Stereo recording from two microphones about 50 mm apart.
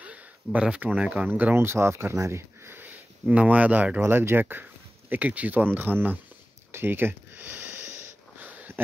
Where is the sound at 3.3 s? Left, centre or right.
Right.